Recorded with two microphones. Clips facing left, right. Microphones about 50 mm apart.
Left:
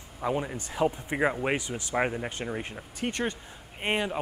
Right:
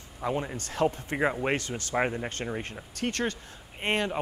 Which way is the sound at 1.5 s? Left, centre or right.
Centre.